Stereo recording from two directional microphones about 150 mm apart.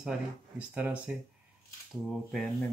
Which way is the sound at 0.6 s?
10° right (ahead or behind).